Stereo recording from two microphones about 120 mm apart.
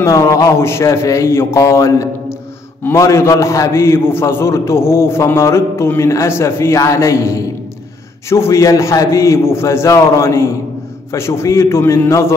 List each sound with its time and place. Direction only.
0.0 s a man's voice: 25° left (ahead or behind)